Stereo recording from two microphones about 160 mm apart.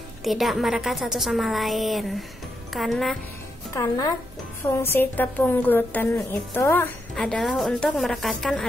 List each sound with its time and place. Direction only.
0.2 s a woman's voice: centre (ahead or behind)
3.7 s a woman's voice: 20° left (ahead or behind)
7.2 s a woman's voice: 5° left (ahead or behind)